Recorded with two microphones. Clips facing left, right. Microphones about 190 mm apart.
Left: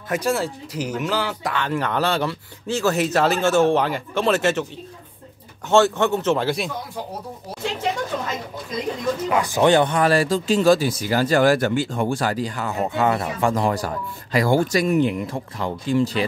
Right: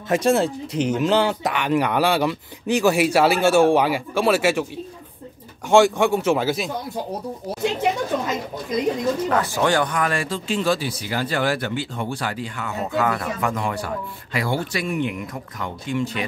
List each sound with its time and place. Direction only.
0.1 s speech: 25° right (ahead or behind); by 4.6 s 10° right (ahead or behind)
5.7 s speech: 10° right (ahead or behind)
9.3 s speech: 15° left (ahead or behind); by 13.0 s 35° left (ahead or behind)
13.0 s speech: 25° left (ahead or behind)